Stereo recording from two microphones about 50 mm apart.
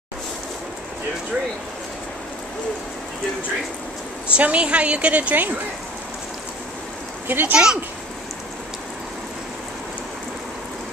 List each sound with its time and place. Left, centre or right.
4.3 s a woman's voice: right
7.2 s speech: right
7.5 s speech: centre